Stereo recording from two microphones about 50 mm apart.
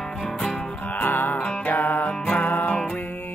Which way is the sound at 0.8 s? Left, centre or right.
Left.